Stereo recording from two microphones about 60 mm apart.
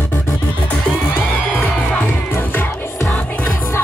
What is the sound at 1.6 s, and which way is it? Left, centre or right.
Music, left.